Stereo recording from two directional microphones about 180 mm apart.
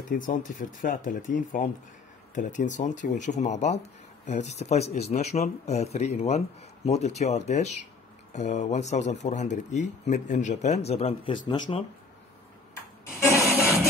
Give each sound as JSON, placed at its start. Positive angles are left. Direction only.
{"t": 0.1, "sound": "speech", "side_deg": 45}
{"t": 11.4, "sound": "speech", "side_deg": 25}
{"t": 12.7, "sound": "music", "side_deg": 15}